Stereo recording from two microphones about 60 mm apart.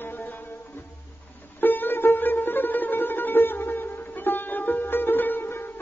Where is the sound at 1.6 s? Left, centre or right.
Left.